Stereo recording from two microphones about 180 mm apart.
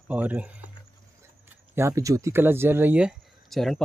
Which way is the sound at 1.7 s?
15° right (ahead or behind).